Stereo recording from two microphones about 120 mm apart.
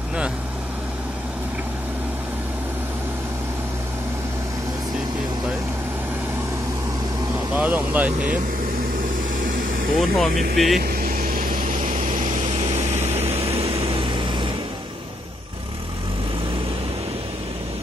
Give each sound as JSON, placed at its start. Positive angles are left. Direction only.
{"t": 7.5, "sound": "speech", "side_deg": -15}
{"t": 9.9, "sound": "speech", "side_deg": 0}
{"t": 11.6, "sound": "vehicle", "side_deg": -90}
{"t": 13.3, "sound": "vehicle", "side_deg": -55}